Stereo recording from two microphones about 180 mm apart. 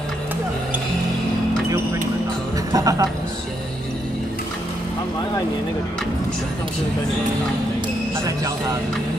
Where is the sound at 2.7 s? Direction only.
20° right (ahead or behind).